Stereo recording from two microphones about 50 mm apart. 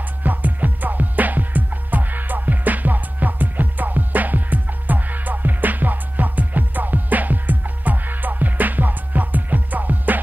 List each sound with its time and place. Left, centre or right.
0.2 s music: right